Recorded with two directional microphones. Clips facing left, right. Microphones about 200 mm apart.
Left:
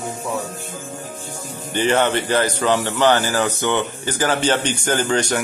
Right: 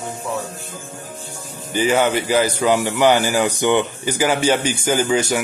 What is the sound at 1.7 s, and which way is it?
Speech, 10° right (ahead or behind).